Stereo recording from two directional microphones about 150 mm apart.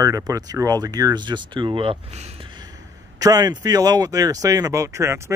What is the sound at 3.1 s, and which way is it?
Speech, 25° right (ahead or behind).